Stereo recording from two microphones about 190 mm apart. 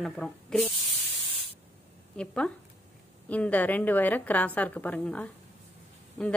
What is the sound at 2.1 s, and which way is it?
A woman's voice, 5° left (ahead or behind).